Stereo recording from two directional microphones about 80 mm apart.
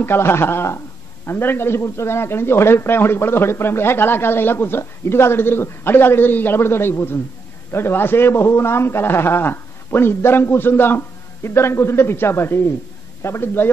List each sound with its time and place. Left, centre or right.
0.0 s a man's voice: left